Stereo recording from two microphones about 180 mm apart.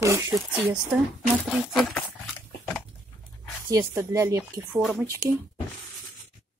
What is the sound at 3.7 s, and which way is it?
Speech, 20° right (ahead or behind).